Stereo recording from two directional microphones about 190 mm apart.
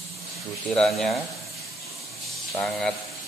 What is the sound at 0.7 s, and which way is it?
Speech, 5° left (ahead or behind).